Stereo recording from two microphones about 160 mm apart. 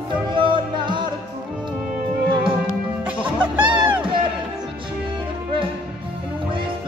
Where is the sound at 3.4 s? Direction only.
10° right (ahead or behind).